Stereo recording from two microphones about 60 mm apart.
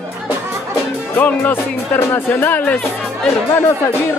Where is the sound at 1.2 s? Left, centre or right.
Left.